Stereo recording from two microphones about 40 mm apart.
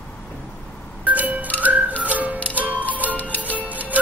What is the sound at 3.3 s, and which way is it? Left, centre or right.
Music, left.